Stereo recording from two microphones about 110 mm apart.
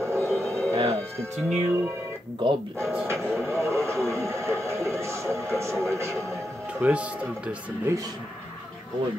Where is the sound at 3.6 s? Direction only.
25° right (ahead or behind).